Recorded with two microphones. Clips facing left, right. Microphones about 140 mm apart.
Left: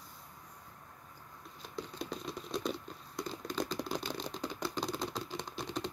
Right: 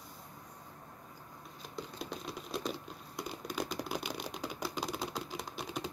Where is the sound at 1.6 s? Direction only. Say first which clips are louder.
Left 2 dB; centre (ahead or behind).